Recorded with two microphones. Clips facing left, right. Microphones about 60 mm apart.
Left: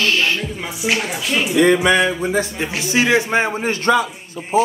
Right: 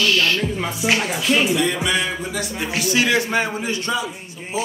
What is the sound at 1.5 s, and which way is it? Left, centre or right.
A man's voice, left.